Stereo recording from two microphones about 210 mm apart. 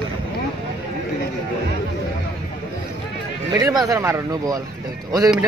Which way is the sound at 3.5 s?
15° right (ahead or behind).